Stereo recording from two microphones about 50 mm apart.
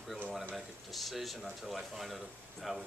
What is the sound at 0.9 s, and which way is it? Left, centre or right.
Speech, centre.